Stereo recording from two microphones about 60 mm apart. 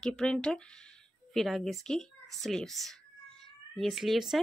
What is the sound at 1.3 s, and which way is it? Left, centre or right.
A child's voice, centre.